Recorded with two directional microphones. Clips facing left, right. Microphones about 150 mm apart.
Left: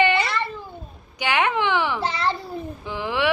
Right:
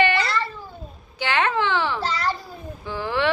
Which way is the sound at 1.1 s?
15° left (ahead or behind).